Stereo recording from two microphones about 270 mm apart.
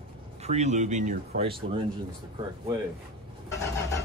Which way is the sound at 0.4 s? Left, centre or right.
Right.